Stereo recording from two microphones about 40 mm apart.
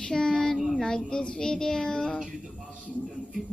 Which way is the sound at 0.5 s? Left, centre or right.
Centre.